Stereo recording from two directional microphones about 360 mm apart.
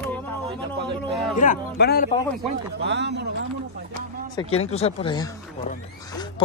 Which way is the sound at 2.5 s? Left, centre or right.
Right.